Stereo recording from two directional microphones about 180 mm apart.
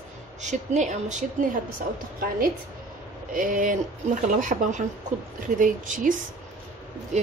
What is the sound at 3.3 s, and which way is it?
A woman's voice, 50° right (ahead or behind).